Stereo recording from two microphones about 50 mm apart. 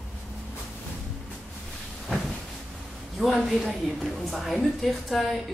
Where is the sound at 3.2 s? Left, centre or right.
Centre.